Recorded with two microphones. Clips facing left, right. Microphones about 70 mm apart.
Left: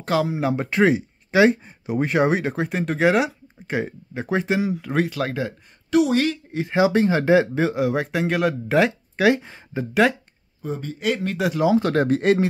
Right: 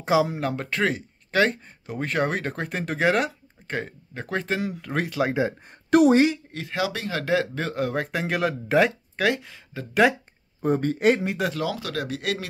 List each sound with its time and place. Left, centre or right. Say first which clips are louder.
0.0 s speech: right 1 dB; centre
0.3 s speech: left 5 dB; centre
5.9 s speech: right 2 dB; right
6.5 s speech: left 9 dB; left; by 8.9 s centre
9.1 s speech: left 5 dB; centre
9.4 s speech: left 8 dB; left
10.6 s speech: right 6 dB; right
11.5 s speech: left 10 dB; left
11.8 s speech: left 10 dB; left